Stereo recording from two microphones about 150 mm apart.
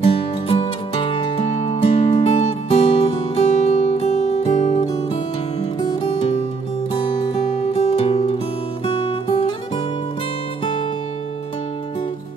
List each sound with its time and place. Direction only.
0.0 s music: 40° left (ahead or behind)
7.7 s music: 40° left (ahead or behind)